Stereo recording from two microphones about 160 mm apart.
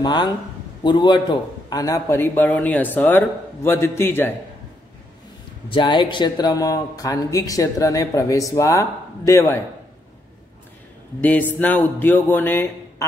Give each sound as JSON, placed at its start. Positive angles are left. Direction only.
{"t": 0.0, "sound": "a man's voice", "side_deg": 30}
{"t": 5.7, "sound": "speech", "side_deg": 30}
{"t": 11.1, "sound": "a man's voice", "side_deg": 10}